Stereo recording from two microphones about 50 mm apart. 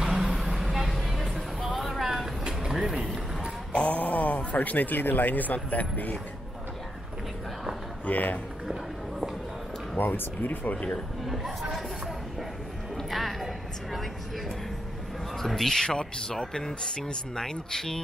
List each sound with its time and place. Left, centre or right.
0.0 s vehicle: centre
3.7 s speech: left
8.0 s a man's voice: left
9.9 s speech: left
11.2 s speech: centre
12.9 s music: centre
15.3 s speech: centre